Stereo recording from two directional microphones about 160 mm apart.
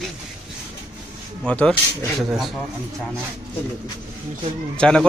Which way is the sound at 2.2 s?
5° right (ahead or behind).